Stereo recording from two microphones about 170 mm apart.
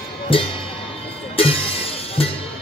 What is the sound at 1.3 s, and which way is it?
Music, 35° left (ahead or behind).